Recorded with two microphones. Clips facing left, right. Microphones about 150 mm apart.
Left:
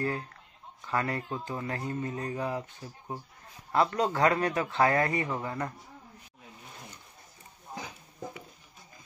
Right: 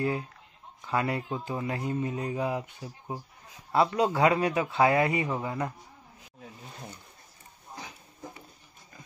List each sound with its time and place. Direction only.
0.8 s speech: 15° right (ahead or behind)